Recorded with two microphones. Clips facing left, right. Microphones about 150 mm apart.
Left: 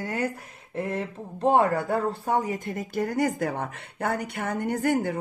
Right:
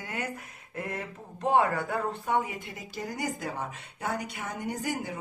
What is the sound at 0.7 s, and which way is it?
Speech, 30° left (ahead or behind).